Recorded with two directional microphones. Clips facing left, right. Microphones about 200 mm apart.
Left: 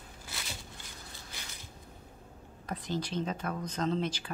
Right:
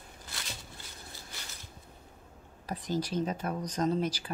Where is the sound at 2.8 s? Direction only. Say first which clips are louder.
Right 3 dB; 40° right (ahead or behind).